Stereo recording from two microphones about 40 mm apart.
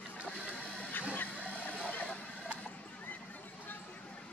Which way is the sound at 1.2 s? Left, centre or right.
Left.